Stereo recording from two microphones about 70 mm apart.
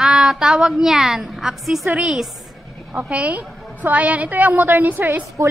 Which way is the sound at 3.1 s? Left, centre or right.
Centre.